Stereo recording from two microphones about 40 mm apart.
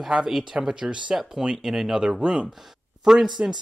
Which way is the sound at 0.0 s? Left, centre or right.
Centre.